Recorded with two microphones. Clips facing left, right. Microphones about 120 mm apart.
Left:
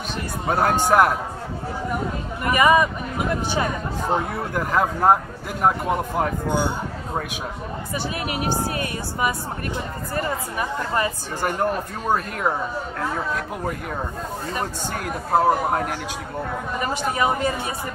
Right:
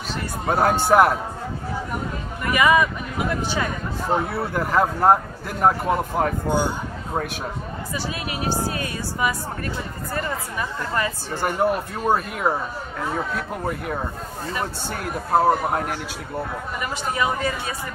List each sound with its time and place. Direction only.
0.5 s speech: centre (ahead or behind)
2.5 s speech: 30° left (ahead or behind)
4.1 s speech: 5° right (ahead or behind)
6.4 s speech: 10° right (ahead or behind)
8.5 s speech: 20° left (ahead or behind)
11.4 s speech: 5° right (ahead or behind)
17.2 s speech: 20° left (ahead or behind)